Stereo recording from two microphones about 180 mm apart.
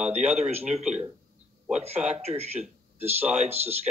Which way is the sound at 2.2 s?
35° right (ahead or behind).